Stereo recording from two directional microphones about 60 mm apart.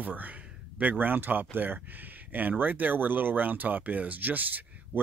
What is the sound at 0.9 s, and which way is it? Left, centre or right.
Speech, right.